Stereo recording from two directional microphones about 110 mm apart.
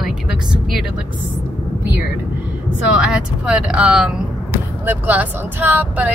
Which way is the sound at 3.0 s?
5° right (ahead or behind).